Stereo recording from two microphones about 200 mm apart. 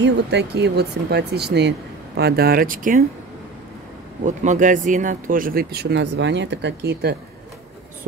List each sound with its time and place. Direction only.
0.0 s speech: 60° right (ahead or behind); by 3.0 s 40° right (ahead or behind)
4.2 s speech: 40° right (ahead or behind); by 7.2 s 55° right (ahead or behind)